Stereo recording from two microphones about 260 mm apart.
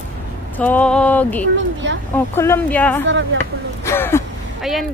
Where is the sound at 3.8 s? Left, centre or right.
Centre.